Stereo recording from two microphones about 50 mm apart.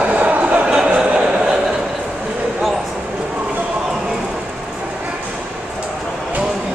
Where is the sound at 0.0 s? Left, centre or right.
Right.